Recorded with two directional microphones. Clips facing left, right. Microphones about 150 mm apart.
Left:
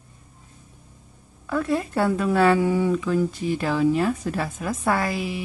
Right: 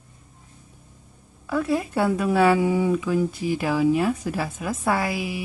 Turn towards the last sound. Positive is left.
turn(degrees=-10)  # may be behind; listen again after turning